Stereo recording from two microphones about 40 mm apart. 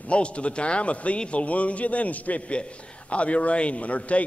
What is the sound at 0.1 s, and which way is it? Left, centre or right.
A man's voice, left.